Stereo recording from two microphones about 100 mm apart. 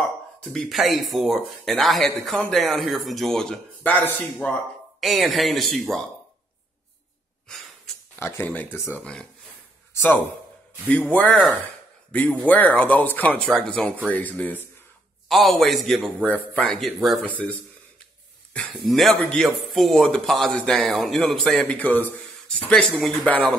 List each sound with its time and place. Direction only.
0.4 s a man's voice: 5° left (ahead or behind)
3.8 s speech: 15° left (ahead or behind)
5.0 s a man's voice: centre (ahead or behind)
7.4 s a sound: 5° left (ahead or behind)
8.2 s speech: 25° left (ahead or behind)
10.9 s speech: 15° left (ahead or behind)
12.4 s speech: 15° left (ahead or behind)
15.2 s a man's voice: centre (ahead or behind)
16.3 s speech: 15° left (ahead or behind)
16.6 s a man's voice: centre (ahead or behind)
17.3 s speech: 15° left (ahead or behind)
18.9 s a man's voice: centre (ahead or behind)
21.5 s speech: 15° left (ahead or behind)
23.2 s speech: 15° left (ahead or behind)